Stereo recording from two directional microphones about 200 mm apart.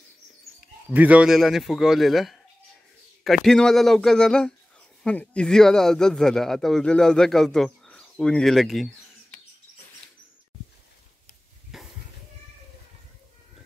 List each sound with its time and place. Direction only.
0.9 s speech: 5° right (ahead or behind)
11.7 s goat: centre (ahead or behind)